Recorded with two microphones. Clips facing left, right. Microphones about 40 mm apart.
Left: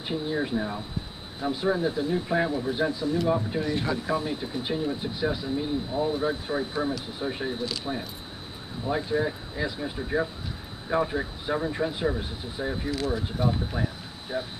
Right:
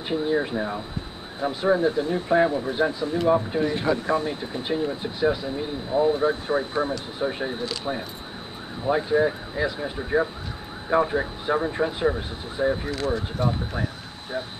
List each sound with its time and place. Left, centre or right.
0.1 s speech: centre
4.1 s speech: centre
4.4 s speech: centre
12.9 s speech: centre